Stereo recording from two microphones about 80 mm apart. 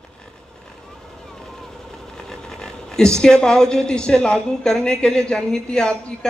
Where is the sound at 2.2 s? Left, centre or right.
Centre.